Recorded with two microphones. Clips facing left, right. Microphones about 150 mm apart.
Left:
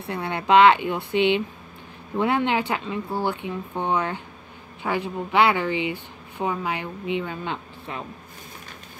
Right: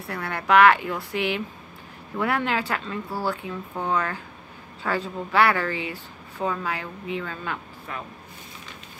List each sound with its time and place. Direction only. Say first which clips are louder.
0.1 s speech: left 2 dB; 20° left (ahead or behind)